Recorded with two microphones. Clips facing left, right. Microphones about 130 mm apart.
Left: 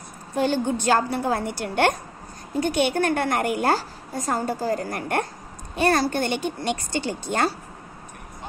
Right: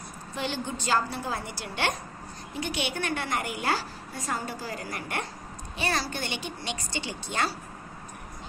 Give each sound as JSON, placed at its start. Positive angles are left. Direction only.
{"t": 0.3, "sound": "a woman's voice", "side_deg": 50}